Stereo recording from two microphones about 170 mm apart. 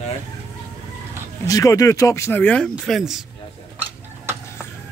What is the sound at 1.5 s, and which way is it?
Speech, 20° left (ahead or behind).